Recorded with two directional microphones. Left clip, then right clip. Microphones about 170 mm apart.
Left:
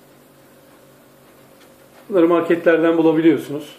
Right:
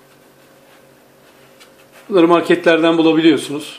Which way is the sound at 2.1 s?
80° right.